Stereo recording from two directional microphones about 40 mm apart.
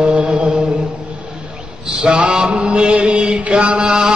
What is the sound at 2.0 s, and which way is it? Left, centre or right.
Chant, right.